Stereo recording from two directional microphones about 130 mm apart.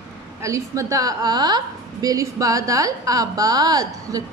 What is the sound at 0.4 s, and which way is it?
A woman's voice, 25° right (ahead or behind).